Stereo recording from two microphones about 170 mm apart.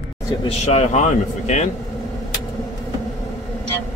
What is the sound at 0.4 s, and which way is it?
Speech, 40° left (ahead or behind).